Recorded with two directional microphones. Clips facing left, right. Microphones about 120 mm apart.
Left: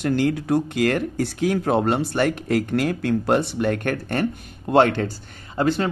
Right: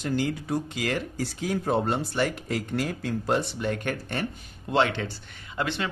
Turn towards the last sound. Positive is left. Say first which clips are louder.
# left 8 dB
turn(degrees=40)  # may be behind; listen again after turning